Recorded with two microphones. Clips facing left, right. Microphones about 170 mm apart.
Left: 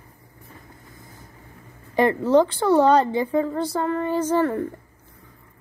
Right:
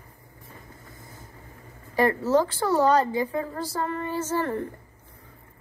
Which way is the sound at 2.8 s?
25° left (ahead or behind).